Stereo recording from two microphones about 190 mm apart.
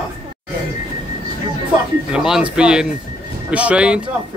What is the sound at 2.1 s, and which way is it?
Speech, 5° right (ahead or behind).